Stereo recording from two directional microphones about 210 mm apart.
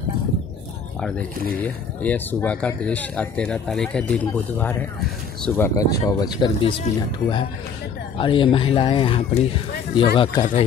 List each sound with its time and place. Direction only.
1.6 s speech: 5° left (ahead or behind); by 10.4 s 25° left (ahead or behind)